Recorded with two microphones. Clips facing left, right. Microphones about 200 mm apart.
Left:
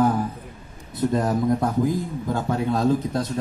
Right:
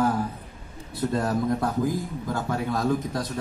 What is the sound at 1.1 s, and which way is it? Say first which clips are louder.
A man's voice: left 3 dB; 20° left (ahead or behind).